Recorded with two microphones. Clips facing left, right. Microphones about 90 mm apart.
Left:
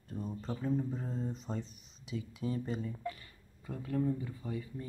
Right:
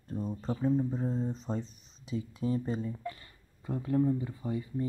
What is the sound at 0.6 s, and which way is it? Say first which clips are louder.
Speech: right 6 dB; 20° right (ahead or behind).